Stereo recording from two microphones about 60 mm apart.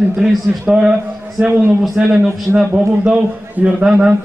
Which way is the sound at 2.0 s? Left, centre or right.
Centre.